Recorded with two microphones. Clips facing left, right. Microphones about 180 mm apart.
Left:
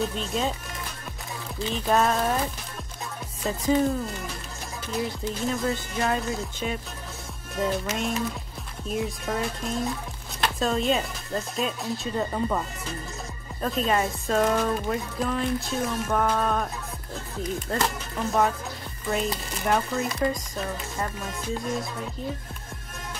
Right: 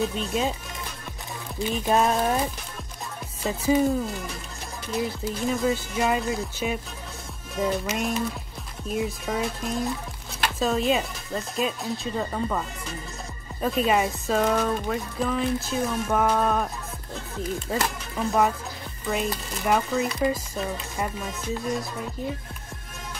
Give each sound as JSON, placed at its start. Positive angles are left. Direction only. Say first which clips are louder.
{"t": 0.0, "sound": "speech", "louder": "right 2 dB", "side_deg": 0}
{"t": 1.7, "sound": "music", "louder": "right 1 dB", "side_deg": -15}
{"t": 3.4, "sound": "speech", "louder": "right 1 dB", "side_deg": -5}
{"t": 13.6, "sound": "speech", "louder": "right 2 dB", "side_deg": -5}
{"t": 17.7, "sound": "speech", "louder": "even", "side_deg": -5}
{"t": 19.0, "sound": "speech", "louder": "even", "side_deg": 0}